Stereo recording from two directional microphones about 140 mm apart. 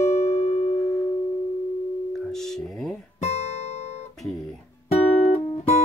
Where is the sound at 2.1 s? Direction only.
5° left (ahead or behind).